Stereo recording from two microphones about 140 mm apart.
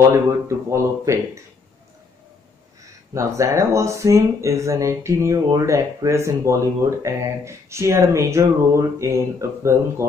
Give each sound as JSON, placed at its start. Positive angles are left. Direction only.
{"t": 0.7, "sound": "speech", "side_deg": -20}
{"t": 3.2, "sound": "speech", "side_deg": -20}